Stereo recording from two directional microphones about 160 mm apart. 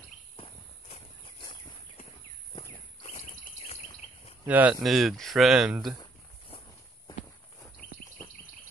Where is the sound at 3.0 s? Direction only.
40° left (ahead or behind).